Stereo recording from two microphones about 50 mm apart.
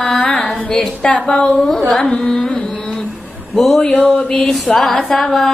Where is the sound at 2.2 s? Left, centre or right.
Centre.